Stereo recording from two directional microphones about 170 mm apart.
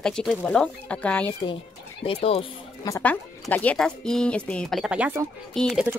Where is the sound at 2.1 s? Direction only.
35° left (ahead or behind).